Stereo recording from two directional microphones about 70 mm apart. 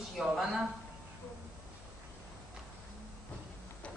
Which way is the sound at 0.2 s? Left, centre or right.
Centre.